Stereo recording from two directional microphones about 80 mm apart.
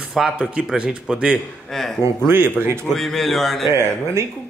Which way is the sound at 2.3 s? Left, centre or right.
Right.